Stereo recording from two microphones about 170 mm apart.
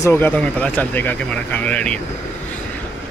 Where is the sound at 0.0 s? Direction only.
15° left (ahead or behind).